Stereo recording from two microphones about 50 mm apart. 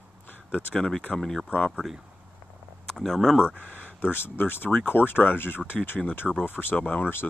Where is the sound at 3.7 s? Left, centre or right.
Left.